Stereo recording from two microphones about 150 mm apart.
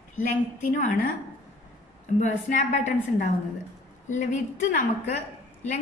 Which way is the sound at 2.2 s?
55° left (ahead or behind).